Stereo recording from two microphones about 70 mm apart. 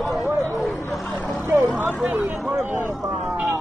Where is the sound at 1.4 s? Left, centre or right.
Right.